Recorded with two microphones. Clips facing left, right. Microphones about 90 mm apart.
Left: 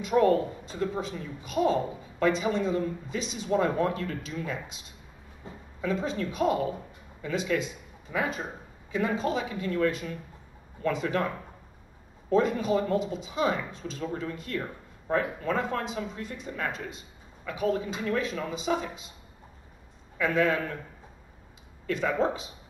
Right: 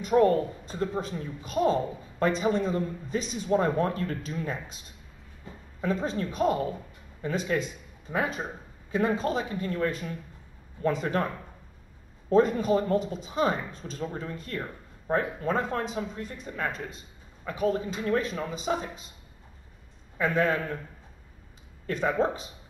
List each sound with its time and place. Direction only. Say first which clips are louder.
0.0 s speech: right 1 dB; 40° right (ahead or behind)
21.8 s speech: even; 40° right (ahead or behind)